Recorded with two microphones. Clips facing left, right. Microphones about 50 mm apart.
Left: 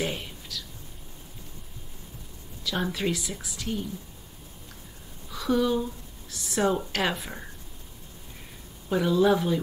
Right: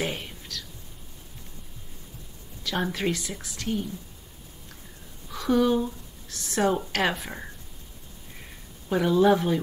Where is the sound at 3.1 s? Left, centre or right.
Centre.